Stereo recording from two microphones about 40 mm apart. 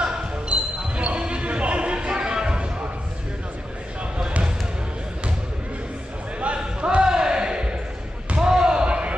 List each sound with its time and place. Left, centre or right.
0.0 s basketball bounce: right
6.4 s a sound: right
7.1 s basketball bounce: right